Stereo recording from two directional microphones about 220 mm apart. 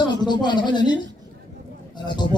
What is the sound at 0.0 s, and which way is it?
A man's voice, 20° left (ahead or behind).